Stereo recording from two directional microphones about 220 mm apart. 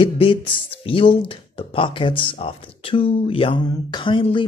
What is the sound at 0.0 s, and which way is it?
Speech, 25° left (ahead or behind).